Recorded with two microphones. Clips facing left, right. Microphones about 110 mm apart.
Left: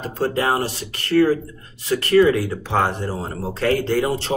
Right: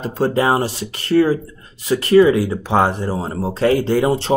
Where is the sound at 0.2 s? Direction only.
20° right (ahead or behind).